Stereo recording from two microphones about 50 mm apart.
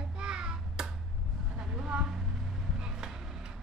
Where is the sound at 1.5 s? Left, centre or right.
Centre.